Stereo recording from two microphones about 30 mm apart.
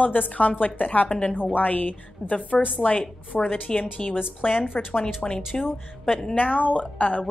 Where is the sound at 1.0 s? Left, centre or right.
Left.